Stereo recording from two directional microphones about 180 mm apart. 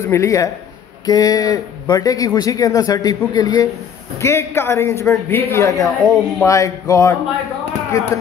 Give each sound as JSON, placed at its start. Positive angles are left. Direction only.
{"t": 0.1, "sound": "a man's voice", "side_deg": 15}